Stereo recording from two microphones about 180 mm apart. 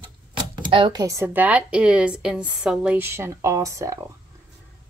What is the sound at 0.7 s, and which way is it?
Speech, 30° right (ahead or behind).